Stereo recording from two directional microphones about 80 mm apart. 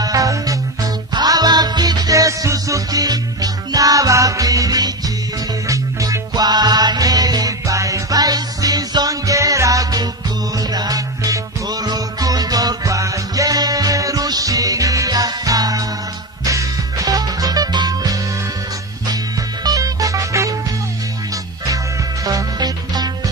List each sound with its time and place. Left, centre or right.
0.0 s music: right
19.6 s music: right
22.2 s music: right